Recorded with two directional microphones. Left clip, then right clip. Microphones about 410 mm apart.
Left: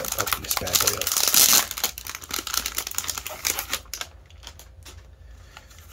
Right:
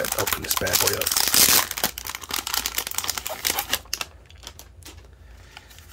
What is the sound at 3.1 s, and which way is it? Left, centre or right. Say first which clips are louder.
Typing: right 2 dB; centre.